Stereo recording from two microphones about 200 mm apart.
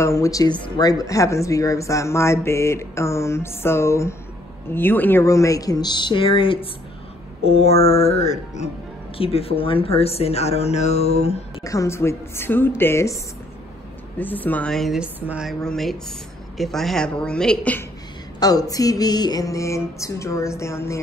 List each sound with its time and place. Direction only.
0.0 s speech: 15° left (ahead or behind); by 11.4 s 30° left (ahead or behind)
11.6 s speech: 15° left (ahead or behind)
14.1 s a woman's voice: 10° left (ahead or behind)
18.4 s music: 20° left (ahead or behind)
20.0 s speech: 15° left (ahead or behind)